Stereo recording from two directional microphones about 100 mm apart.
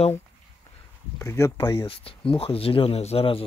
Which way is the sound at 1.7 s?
65° left (ahead or behind).